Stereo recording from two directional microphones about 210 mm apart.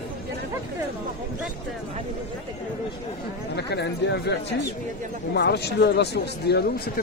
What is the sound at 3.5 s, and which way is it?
Speech, 55° left (ahead or behind).